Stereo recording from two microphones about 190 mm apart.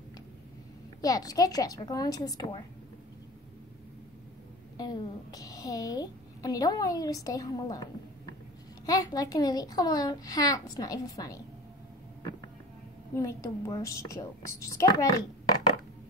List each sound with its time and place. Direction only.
1.0 s a woman's voice: 20° left (ahead or behind)
4.7 s a woman's voice: 20° left (ahead or behind)
8.8 s a woman's voice: 20° left (ahead or behind)
13.1 s a woman's voice: 15° left (ahead or behind)